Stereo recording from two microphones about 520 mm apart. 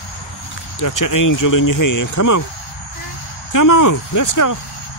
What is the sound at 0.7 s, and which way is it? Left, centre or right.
Speech, left.